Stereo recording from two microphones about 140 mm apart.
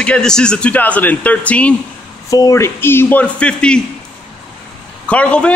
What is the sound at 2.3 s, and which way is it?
A man's voice, 20° left (ahead or behind).